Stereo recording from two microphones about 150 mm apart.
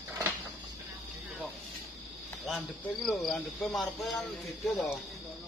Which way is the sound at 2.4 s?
Centre (ahead or behind).